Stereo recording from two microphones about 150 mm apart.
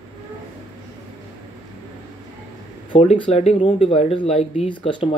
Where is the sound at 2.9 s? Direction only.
40° left (ahead or behind).